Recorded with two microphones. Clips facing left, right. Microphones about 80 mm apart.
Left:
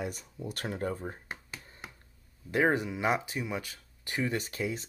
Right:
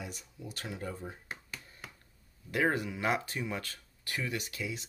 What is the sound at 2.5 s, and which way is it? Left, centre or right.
Speech, left.